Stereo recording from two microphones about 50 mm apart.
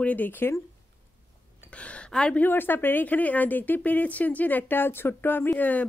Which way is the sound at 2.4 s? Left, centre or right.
Left.